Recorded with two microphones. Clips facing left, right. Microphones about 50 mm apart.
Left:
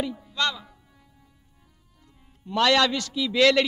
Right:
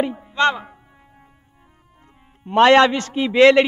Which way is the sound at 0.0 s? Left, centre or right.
Right.